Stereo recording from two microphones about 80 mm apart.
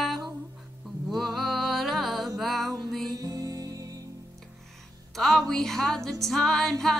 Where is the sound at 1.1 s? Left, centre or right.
Centre.